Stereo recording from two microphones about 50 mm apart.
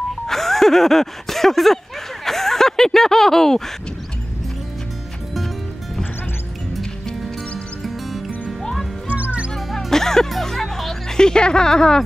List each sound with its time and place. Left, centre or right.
0.3 s speech: centre
9.0 s music: right
9.7 s music: centre